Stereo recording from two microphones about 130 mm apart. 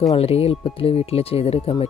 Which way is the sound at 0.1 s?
50° left (ahead or behind).